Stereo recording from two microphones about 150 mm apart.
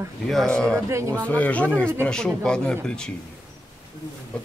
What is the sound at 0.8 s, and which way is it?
Speech, 20° right (ahead or behind).